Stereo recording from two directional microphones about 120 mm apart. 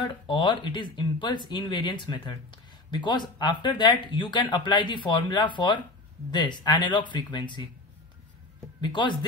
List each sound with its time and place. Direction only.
0.1 s speech: 40° left (ahead or behind)
8.8 s speech: 40° left (ahead or behind)